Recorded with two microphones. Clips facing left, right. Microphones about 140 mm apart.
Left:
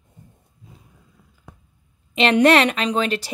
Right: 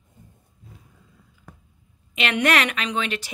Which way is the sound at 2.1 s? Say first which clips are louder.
Left 7 dB; 30° left (ahead or behind).